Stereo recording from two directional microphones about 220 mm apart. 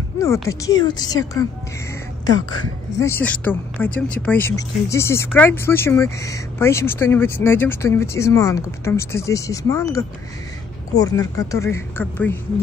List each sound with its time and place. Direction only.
0.2 s speech: 15° left (ahead or behind)
3.0 s speech: 10° left (ahead or behind)